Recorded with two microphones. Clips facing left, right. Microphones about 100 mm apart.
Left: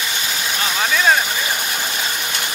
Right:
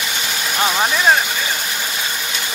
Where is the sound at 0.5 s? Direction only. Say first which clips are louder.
Right 3 dB; 25° right (ahead or behind).